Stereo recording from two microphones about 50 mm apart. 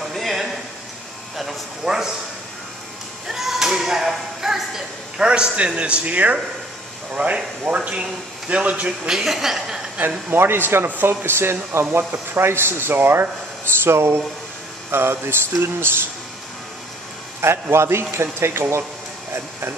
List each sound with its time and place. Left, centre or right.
0.1 s a sound: centre
3.3 s a sound: centre; by 6.3 s right
7.2 s speech: right
7.6 s speech: right
9.1 s speech: centre
9.9 s speech: right
13.8 s a man's voice: right
17.4 s a man's voice: right